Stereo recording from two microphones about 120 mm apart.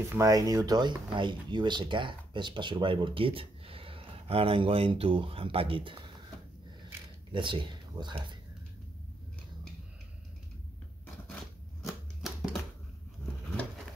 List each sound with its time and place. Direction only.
0.1 s speech: 30° right (ahead or behind); by 6.0 s 45° right (ahead or behind)
7.3 s speech: 40° right (ahead or behind)
11.8 s typewriter: centre (ahead or behind)